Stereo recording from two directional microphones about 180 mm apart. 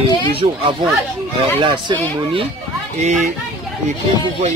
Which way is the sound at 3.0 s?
40° right (ahead or behind).